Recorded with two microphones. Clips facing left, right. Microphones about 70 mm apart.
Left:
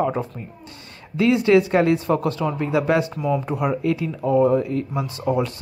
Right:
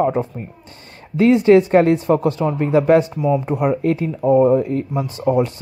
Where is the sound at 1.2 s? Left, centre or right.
Right.